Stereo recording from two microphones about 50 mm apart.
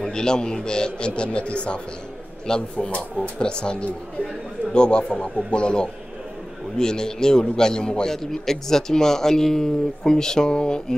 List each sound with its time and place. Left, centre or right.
0.0 s a man's voice: centre